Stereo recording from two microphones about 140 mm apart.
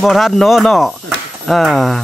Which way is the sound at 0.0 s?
Centre (ahead or behind).